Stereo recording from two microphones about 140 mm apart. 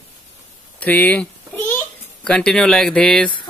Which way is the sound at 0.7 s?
10° left (ahead or behind).